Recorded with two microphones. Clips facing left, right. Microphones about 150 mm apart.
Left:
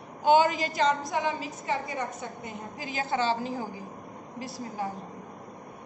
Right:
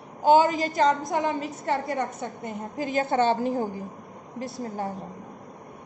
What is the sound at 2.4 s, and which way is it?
A woman's voice, 45° right (ahead or behind).